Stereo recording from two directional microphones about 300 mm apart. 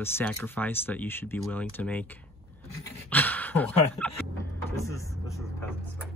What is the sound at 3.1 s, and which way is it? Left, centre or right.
Speech, centre.